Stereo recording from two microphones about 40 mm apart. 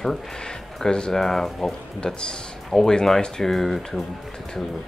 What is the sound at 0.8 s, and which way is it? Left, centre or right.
Speech, left.